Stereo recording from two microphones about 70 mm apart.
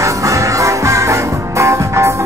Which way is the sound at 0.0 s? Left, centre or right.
Right.